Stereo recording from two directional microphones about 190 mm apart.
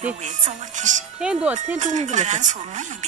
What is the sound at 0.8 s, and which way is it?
Speech, 40° right (ahead or behind).